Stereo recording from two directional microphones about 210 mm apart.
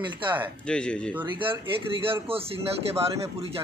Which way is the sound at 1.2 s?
25° right (ahead or behind).